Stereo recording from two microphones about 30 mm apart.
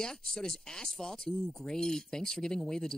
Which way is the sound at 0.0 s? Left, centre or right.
Left.